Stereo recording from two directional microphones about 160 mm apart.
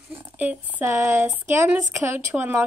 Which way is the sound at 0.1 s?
10° right (ahead or behind).